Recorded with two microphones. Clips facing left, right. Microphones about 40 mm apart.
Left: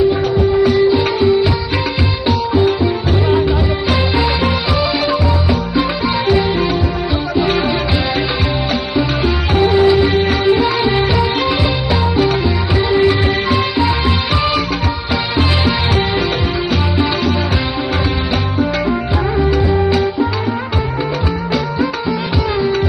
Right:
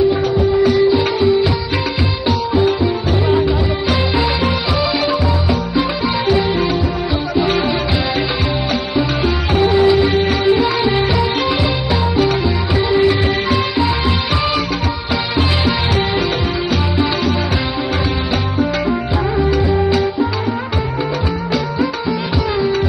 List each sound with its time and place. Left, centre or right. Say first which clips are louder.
0.9 s music: left 1 dB; centre
4.7 s music: left 1 dB; centre
9.5 s music: left 1 dB; centre
19.7 s music: left 1 dB; centre